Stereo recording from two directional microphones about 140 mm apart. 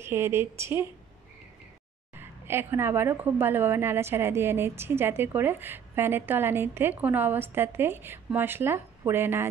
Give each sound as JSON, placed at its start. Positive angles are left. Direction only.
{"t": 0.0, "sound": "a woman's voice", "side_deg": -15}
{"t": 2.1, "sound": "a woman's voice", "side_deg": -15}